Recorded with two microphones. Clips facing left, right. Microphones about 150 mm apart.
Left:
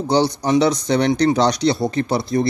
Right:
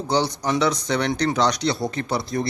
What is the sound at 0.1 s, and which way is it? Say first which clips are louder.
Speech: left 5 dB; 30° left (ahead or behind).